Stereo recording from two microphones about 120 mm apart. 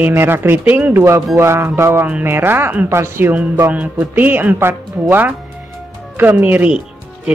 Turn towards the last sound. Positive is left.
turn(degrees=-10)  # may be behind; listen again after turning